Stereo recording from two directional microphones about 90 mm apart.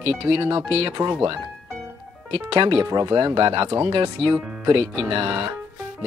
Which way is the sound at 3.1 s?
65° right (ahead or behind).